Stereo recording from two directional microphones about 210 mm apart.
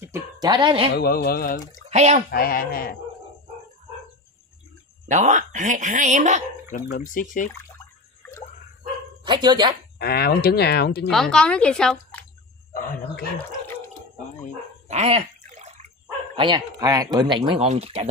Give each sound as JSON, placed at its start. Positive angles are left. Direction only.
{"t": 0.0, "sound": "a sound", "side_deg": -15}
{"t": 0.9, "sound": "speech", "side_deg": 45}
{"t": 1.9, "sound": "speech", "side_deg": -30}
{"t": 2.3, "sound": "speech", "side_deg": 45}
{"t": 5.0, "sound": "speech", "side_deg": -35}
{"t": 6.7, "sound": "speech", "side_deg": 40}
{"t": 9.2, "sound": "speech", "side_deg": -20}
{"t": 9.9, "sound": "speech", "side_deg": 50}
{"t": 11.1, "sound": "speech", "side_deg": 0}
{"t": 12.7, "sound": "speech", "side_deg": 40}
{"t": 14.9, "sound": "a sound", "side_deg": -30}
{"t": 16.3, "sound": "speech", "side_deg": -20}